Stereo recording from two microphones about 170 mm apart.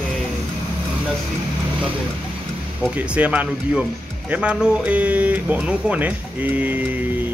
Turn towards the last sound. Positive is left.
turn(degrees=-10)  # may be behind; listen again after turning